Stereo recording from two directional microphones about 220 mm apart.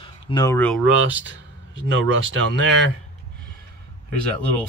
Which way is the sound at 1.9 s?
60° right (ahead or behind).